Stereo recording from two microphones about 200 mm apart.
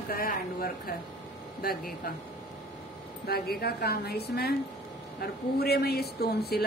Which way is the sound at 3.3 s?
50° left (ahead or behind).